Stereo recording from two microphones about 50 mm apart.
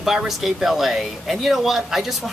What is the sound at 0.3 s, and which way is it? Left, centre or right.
Speech, centre.